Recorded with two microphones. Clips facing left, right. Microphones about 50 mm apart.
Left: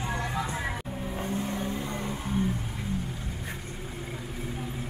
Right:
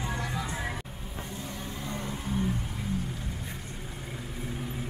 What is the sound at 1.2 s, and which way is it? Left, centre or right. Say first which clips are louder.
Vehicle: left 7 dB; left.